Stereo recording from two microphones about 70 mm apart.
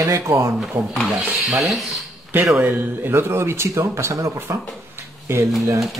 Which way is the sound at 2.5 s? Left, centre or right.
Right.